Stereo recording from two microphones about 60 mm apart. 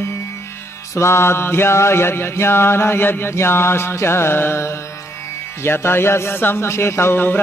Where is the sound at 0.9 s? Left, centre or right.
Left.